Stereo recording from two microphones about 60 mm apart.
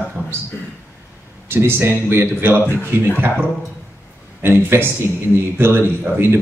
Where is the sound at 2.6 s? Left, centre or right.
Left.